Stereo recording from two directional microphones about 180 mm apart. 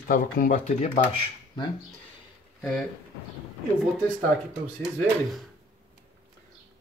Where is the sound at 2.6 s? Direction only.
5° left (ahead or behind).